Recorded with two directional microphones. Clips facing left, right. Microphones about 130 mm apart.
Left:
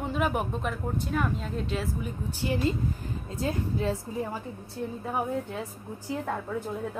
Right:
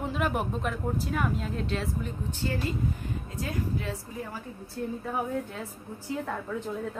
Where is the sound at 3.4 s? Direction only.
30° left (ahead or behind).